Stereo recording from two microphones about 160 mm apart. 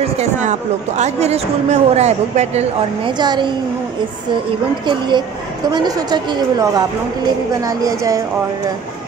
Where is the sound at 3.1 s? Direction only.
25° right (ahead or behind).